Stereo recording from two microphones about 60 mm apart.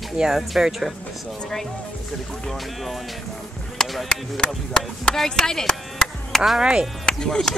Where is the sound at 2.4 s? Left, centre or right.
Centre.